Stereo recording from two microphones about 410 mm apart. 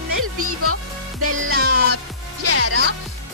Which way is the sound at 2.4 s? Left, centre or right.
Right.